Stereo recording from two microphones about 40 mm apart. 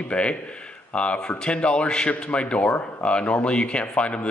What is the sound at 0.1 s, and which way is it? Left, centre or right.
Speech, left.